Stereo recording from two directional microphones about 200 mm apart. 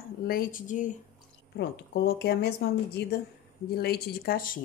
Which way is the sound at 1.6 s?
55° left (ahead or behind).